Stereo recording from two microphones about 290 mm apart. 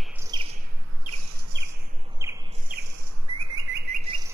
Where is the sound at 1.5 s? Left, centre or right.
Right.